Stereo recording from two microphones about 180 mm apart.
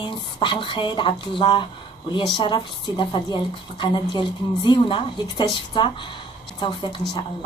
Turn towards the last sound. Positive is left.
turn(degrees=25)  # may be behind; listen again after turning